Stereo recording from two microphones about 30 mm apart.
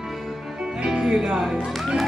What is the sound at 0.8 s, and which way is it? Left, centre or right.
Music, right.